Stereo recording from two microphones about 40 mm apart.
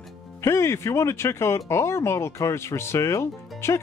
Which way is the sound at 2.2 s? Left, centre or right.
Left.